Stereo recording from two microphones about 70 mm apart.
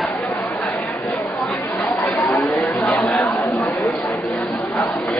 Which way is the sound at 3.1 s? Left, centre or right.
Centre.